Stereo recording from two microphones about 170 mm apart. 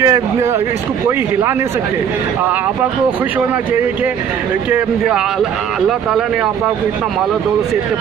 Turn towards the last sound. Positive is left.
turn(degrees=-5)  # may be behind; listen again after turning